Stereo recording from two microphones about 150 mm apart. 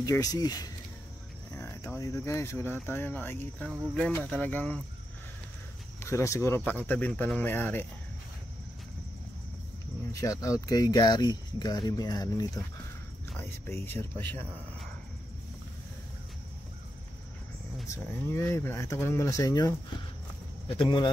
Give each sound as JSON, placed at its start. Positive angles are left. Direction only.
{"t": 0.0, "sound": "speech", "side_deg": 25}
{"t": 5.9, "sound": "speech", "side_deg": 20}
{"t": 10.2, "sound": "speech", "side_deg": 20}
{"t": 13.4, "sound": "speech", "side_deg": 15}
{"t": 17.8, "sound": "speech", "side_deg": 20}
{"t": 20.6, "sound": "speech", "side_deg": 35}